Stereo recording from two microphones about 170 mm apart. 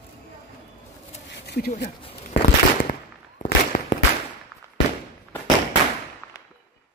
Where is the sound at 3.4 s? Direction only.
45° left (ahead or behind).